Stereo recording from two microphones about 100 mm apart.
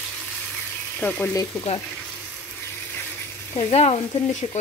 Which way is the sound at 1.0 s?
20° left (ahead or behind).